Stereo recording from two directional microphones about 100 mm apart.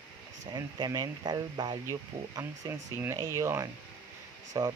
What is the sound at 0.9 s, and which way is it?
Speech, 45° right (ahead or behind).